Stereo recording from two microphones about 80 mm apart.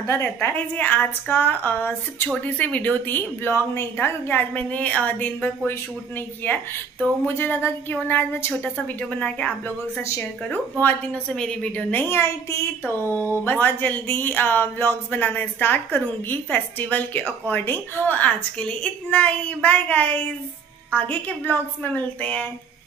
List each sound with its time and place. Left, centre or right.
0.0 s a woman's voice: left
0.7 s speech: left
11.3 s a woman's voice: centre
12.0 s a woman's voice: left